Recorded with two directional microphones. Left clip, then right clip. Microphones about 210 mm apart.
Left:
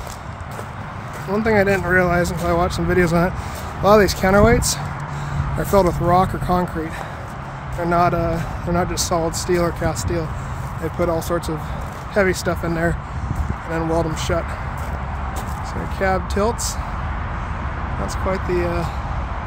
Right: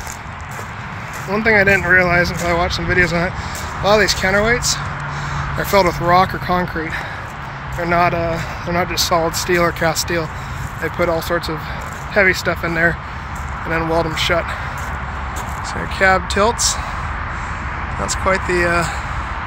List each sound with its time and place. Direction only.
1.3 s speech: 20° left (ahead or behind); by 4.7 s 50° left (ahead or behind)
5.6 s speech: 30° left (ahead or behind)
7.9 s speech: 25° left (ahead or behind)
14.1 s speech: 15° left (ahead or behind)
16.0 s speech: 5° left (ahead or behind)
18.0 s speech: 5° left (ahead or behind)